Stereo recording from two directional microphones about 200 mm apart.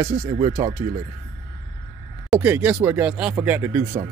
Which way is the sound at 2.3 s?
10° right (ahead or behind).